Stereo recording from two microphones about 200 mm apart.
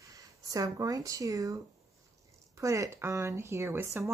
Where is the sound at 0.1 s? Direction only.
15° right (ahead or behind).